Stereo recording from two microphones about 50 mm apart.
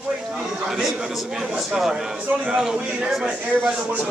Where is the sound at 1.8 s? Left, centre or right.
Centre.